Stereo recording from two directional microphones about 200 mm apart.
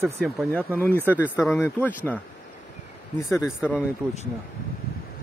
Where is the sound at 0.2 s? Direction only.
5° left (ahead or behind).